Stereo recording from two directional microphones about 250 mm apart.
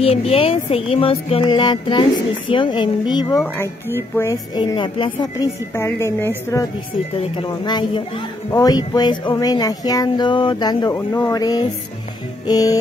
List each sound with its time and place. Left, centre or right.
0.0 s music: left
4.2 s speech: centre
7.3 s music: centre
8.5 s speech: centre